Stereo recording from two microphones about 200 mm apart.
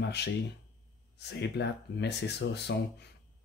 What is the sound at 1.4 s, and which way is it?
Speech, 60° left (ahead or behind).